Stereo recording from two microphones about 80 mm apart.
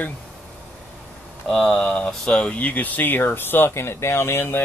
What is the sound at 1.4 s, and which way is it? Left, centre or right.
Speech, centre.